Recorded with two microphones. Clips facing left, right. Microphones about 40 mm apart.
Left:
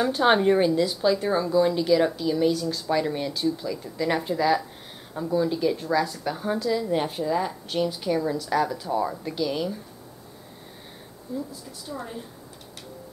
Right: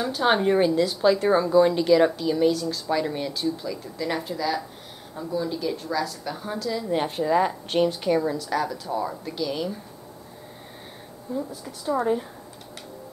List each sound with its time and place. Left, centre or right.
0.0 s a woman's voice: centre
7.2 s speech: centre
7.9 s a woman's voice: centre
11.9 s speech: right